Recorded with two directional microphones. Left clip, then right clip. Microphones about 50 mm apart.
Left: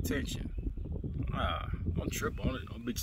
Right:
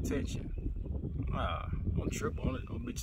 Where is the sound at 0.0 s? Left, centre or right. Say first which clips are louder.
Left 1 dB; right.